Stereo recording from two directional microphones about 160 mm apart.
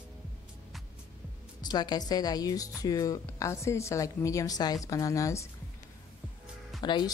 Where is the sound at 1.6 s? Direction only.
25° left (ahead or behind).